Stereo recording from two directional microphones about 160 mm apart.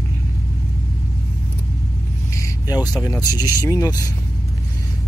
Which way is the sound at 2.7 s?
25° left (ahead or behind).